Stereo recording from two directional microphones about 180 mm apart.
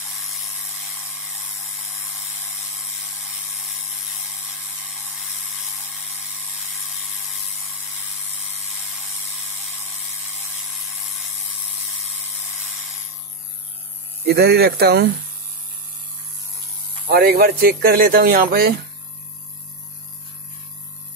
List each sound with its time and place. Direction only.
14.2 s speech: 65° right (ahead or behind)
17.1 s speech: 60° right (ahead or behind)